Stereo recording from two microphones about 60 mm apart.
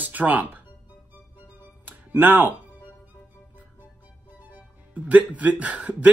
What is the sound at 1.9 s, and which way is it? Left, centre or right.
Music, right.